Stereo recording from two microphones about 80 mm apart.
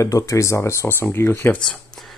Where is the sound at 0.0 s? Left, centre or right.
Left.